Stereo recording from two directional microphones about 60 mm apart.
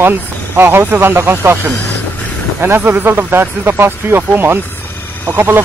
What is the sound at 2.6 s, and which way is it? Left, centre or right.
Speech, right.